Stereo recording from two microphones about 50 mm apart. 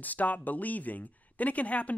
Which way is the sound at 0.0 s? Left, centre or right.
Left.